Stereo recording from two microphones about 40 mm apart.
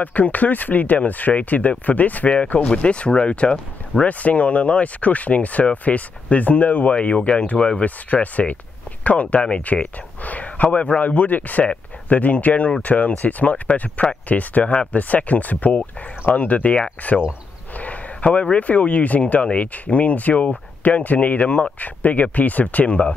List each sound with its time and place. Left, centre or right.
0.0 s speech: left
17.7 s speech: left